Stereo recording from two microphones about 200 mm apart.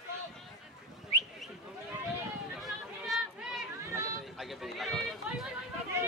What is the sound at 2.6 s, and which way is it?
Chatter, centre (ahead or behind).